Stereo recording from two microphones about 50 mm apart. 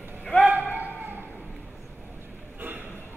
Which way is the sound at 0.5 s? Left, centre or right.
Right.